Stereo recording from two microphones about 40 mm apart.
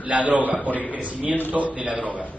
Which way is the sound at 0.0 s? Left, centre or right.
Right.